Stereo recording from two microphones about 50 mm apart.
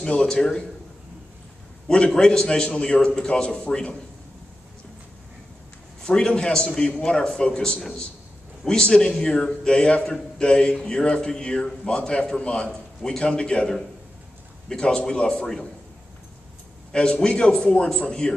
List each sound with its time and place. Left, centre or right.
0.1 s a man's voice: centre
1.9 s a man's voice: centre
6.0 s a man's voice: centre
16.9 s a man's voice: centre